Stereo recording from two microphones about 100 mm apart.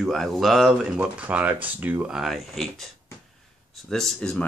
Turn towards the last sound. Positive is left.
turn(degrees=10)  # may be behind; listen again after turning